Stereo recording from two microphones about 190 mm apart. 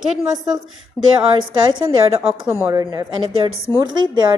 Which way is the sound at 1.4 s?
30° right (ahead or behind).